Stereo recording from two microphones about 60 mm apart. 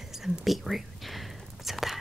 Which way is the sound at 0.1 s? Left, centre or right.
Centre.